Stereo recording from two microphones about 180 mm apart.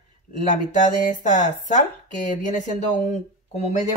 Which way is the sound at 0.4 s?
40° left (ahead or behind).